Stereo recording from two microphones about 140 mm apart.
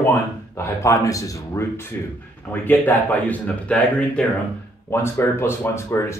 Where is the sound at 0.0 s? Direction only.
15° left (ahead or behind).